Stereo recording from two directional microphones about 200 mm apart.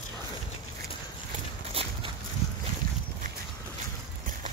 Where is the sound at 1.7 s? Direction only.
30° right (ahead or behind).